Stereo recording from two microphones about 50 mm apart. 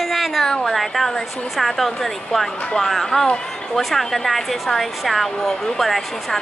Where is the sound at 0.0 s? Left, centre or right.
Centre.